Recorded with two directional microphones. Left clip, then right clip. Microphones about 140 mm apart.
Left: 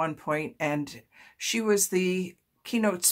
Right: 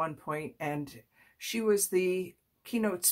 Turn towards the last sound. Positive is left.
turn(degrees=30)  # may be behind; listen again after turning